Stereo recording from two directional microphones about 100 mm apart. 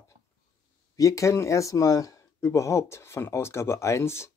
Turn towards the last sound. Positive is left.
turn(degrees=25)  # may be behind; listen again after turning